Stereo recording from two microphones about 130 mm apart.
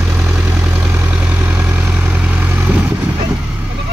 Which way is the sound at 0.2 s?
15° right (ahead or behind).